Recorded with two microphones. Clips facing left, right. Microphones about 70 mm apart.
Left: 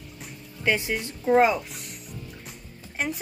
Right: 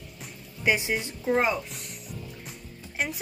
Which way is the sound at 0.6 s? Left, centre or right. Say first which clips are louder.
Even; centre.